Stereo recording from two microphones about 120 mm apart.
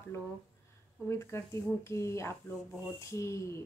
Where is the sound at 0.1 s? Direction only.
20° left (ahead or behind).